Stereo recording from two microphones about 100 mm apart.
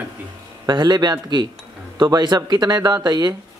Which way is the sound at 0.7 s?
45° right (ahead or behind).